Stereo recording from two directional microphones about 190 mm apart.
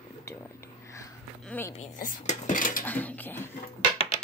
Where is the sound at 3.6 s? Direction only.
30° left (ahead or behind).